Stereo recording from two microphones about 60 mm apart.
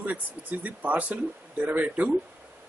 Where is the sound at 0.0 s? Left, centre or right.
Right.